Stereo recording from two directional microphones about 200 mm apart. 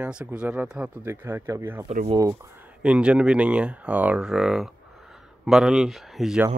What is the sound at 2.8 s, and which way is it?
Speech, 5° right (ahead or behind).